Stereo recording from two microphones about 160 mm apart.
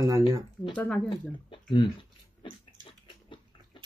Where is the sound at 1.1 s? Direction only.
30° left (ahead or behind).